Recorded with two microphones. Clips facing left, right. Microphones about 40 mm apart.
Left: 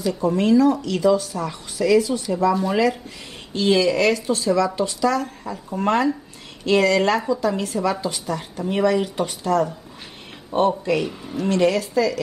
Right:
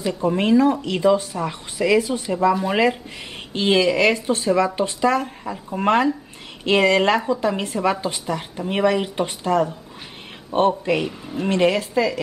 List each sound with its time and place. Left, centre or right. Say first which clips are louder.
0.0 s speech: even; right
2.7 s speech: right 1 dB; right
5.4 s speech: right 1 dB; centre
5.8 s speech: right 2 dB; right
11.0 s speech: even; centre
11.3 s speech: even; right